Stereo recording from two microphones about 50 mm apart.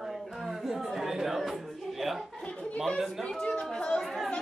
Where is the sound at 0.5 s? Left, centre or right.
Centre.